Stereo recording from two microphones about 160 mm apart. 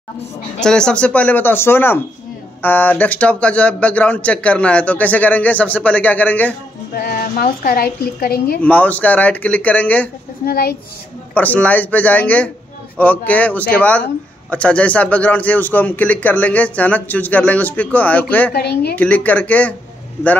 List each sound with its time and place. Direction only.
0.6 s a man's voice: 5° left (ahead or behind)
7.0 s music: 70° left (ahead or behind)
7.6 s a woman's voice: 70° left (ahead or behind)
8.6 s a man's voice: 10° left (ahead or behind)
10.4 s a woman's voice: 70° left (ahead or behind)
11.3 s a man's voice: 10° left (ahead or behind)
18.5 s speech: 90° left
18.9 s a man's voice: 10° left (ahead or behind)